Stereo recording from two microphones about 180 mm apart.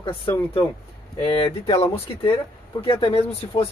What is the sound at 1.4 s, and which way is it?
Speech, 30° left (ahead or behind).